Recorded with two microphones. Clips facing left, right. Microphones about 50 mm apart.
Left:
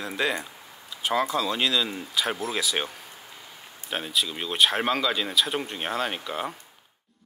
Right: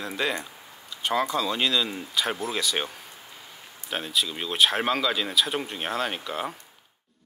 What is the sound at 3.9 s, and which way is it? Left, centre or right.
Speech, centre.